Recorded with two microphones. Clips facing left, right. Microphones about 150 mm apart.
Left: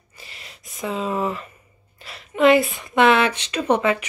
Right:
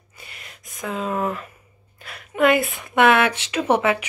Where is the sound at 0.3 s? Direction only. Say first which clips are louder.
Even; 50° right (ahead or behind).